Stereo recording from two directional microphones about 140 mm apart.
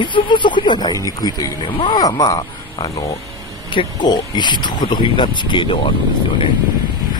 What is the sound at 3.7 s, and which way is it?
Speech, 30° left (ahead or behind).